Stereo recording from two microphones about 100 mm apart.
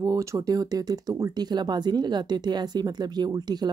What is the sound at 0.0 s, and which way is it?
Speech, 35° right (ahead or behind).